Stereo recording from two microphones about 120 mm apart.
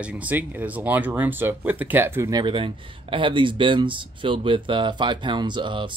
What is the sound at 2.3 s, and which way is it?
Speech, 40° right (ahead or behind).